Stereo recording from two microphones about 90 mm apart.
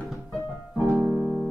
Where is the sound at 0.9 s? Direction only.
15° right (ahead or behind).